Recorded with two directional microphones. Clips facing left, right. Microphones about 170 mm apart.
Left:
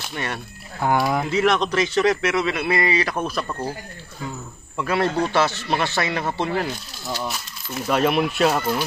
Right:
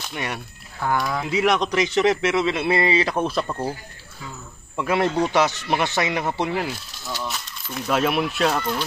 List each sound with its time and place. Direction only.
0.1 s a man's voice: 10° right (ahead or behind)
0.7 s speech: 25° left (ahead or behind)
1.3 s a man's voice: 15° right (ahead or behind)
4.7 s a man's voice: 20° right (ahead or behind)
7.1 s speech: centre (ahead or behind)